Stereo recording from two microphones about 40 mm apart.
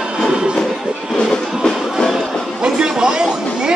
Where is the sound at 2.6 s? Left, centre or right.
Centre.